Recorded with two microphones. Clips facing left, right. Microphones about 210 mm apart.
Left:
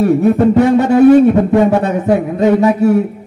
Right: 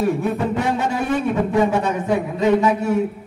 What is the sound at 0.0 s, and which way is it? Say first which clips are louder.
Speech: left 10 dB; 40° left (ahead or behind).